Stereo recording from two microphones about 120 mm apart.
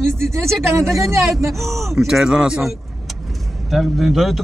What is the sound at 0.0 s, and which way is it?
Speech, 20° right (ahead or behind).